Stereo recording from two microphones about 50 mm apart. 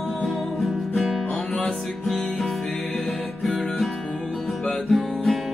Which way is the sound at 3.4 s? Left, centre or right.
Centre.